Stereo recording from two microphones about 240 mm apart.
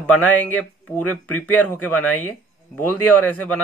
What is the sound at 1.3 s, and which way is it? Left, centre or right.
Speech, left.